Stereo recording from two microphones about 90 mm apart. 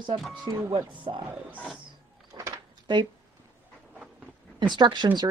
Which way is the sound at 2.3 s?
50° right (ahead or behind).